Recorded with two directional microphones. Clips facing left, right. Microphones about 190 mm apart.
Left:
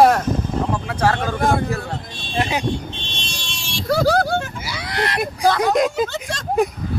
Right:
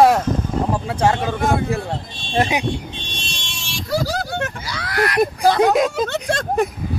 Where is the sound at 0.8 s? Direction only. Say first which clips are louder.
Right 1 dB; 25° right (ahead or behind).